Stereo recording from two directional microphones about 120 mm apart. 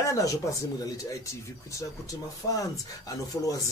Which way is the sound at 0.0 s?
30° left (ahead or behind).